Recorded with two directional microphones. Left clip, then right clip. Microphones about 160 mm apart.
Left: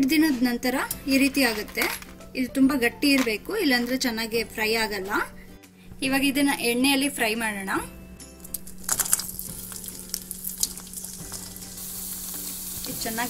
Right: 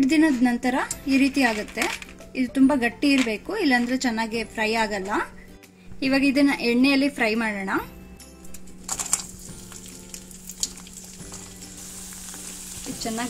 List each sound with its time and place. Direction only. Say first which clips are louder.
0.0 s speech: right 2 dB; 35° right (ahead or behind)
5.9 s a woman's voice: right 3 dB; 40° right (ahead or behind)
13.0 s speech: even; 35° right (ahead or behind)